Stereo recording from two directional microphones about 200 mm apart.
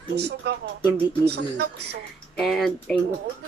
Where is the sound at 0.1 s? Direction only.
55° right (ahead or behind).